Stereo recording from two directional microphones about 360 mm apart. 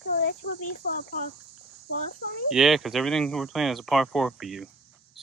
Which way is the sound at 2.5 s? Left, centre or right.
Centre.